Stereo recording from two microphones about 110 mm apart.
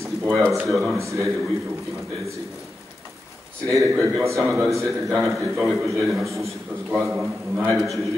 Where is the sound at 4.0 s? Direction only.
25° right (ahead or behind).